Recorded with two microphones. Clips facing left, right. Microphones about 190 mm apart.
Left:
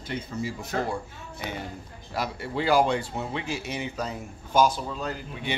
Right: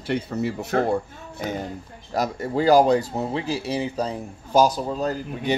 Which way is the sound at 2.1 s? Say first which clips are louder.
Right 6 dB; 40° right (ahead or behind).